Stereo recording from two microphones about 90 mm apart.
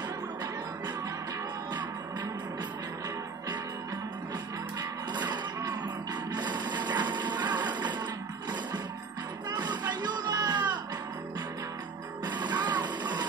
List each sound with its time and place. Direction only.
5.1 s music: 55° right (ahead or behind)
6.3 s printer: 55° right (ahead or behind)
7.0 s music: 60° right (ahead or behind)
9.5 s music: 55° right (ahead or behind)
12.3 s music: 60° right (ahead or behind)